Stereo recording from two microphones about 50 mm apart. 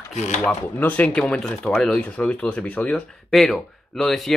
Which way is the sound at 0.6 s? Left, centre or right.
Left.